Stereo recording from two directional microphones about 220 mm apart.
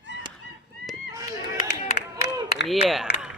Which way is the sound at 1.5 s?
50° left (ahead or behind).